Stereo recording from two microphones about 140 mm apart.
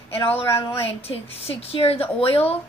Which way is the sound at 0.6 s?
45° left (ahead or behind).